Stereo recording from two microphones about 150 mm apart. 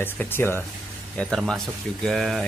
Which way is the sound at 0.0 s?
15° left (ahead or behind).